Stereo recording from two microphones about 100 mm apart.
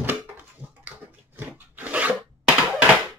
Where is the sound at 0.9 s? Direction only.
15° right (ahead or behind).